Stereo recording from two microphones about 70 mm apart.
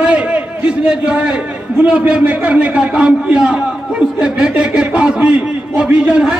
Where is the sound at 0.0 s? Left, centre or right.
Centre.